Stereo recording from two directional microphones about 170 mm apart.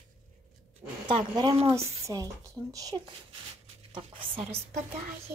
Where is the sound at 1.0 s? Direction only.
25° right (ahead or behind).